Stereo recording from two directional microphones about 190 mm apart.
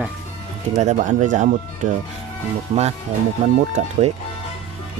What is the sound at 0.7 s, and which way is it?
Speech, 40° right (ahead or behind).